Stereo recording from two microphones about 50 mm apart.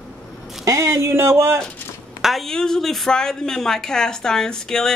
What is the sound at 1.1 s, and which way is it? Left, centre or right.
Speech, right.